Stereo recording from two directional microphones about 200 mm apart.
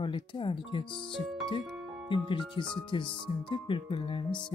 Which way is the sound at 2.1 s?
25° left (ahead or behind).